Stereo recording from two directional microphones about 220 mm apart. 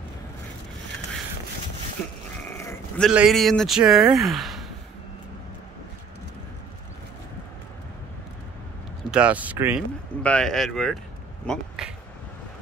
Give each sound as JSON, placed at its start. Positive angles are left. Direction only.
{"t": 2.4, "sound": "sheep", "side_deg": 10}
{"t": 3.1, "sound": "speech", "side_deg": 0}
{"t": 9.1, "sound": "speech", "side_deg": -5}
{"t": 10.2, "sound": "speech", "side_deg": 5}